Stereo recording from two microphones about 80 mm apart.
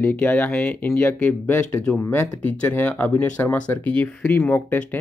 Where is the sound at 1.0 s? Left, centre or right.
Left.